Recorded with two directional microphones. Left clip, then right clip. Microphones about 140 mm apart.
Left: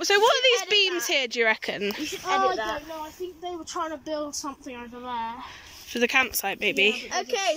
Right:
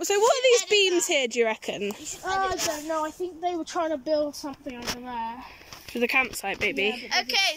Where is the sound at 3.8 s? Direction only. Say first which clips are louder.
Right 2 dB; 50° right (ahead or behind).